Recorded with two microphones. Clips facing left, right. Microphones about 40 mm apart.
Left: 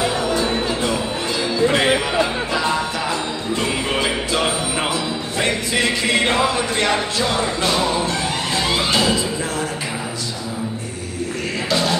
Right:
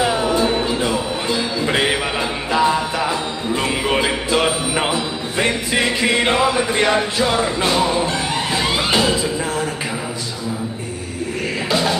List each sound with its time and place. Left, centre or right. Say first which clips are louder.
0.2 s music: right 2 dB; right
11.7 s music: right 1 dB; centre